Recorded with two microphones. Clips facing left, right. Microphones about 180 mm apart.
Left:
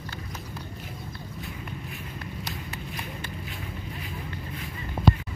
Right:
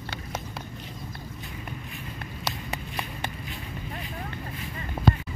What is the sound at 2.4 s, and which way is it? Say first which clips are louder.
Run: right 3 dB; 80° right.